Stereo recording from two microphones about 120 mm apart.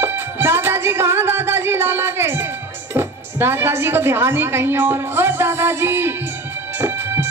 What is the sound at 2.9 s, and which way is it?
Speech, 20° right (ahead or behind).